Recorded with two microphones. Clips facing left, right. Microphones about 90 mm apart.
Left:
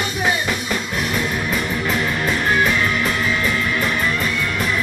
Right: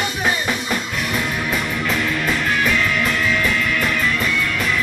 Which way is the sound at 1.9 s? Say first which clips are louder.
Even; 25° left (ahead or behind).